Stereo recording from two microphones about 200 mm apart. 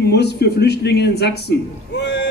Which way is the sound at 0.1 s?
55° left (ahead or behind).